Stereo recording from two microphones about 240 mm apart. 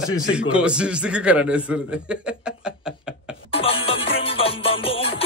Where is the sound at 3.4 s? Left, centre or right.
Left.